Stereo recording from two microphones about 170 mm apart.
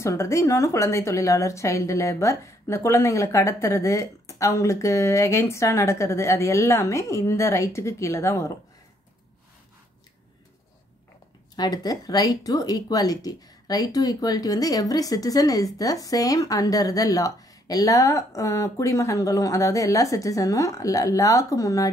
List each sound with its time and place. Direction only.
0.0 s a woman's voice: 15° left (ahead or behind)
11.5 s speech: 25° left (ahead or behind)